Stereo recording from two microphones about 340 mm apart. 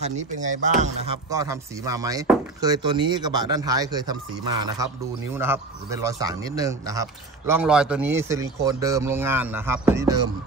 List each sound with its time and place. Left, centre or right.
0.0 s speech: right
1.3 s speech: centre
5.3 s speech: centre